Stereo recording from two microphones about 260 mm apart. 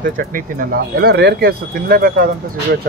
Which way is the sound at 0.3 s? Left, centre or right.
Right.